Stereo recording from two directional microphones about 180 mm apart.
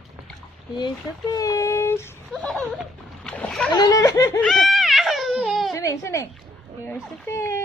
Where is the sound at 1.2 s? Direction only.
20° left (ahead or behind).